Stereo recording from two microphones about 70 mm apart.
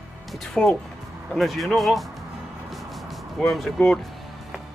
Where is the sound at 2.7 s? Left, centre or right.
Centre.